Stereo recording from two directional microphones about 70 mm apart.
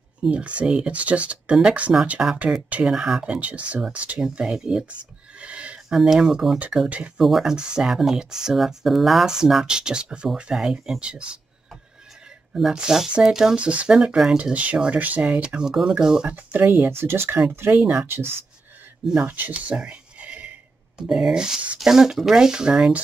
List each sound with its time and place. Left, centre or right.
0.3 s speech: centre
2.9 s speech: centre
5.4 s a sound: centre
5.9 s speech: centre
12.5 s speech: centre
13.6 s speech: centre
14.4 s speech: right
16.3 s speech: right
19.2 s a sound: right
21.1 s speech: centre